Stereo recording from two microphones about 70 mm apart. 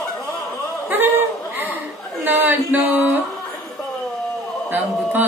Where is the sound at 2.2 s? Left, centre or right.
Right.